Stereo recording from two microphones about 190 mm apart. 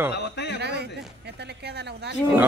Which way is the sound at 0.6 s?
60° right (ahead or behind).